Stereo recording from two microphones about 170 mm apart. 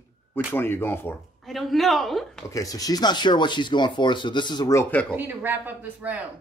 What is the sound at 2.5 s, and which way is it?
Speech, 20° left (ahead or behind).